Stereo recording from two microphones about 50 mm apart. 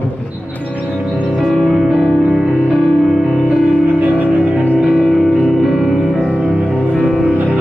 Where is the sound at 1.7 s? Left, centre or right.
Centre.